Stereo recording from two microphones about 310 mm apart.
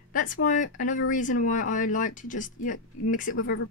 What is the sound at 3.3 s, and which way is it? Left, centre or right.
Speech, left.